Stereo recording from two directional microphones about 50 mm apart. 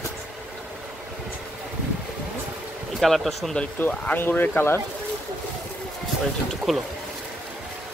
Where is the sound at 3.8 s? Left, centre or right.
Left.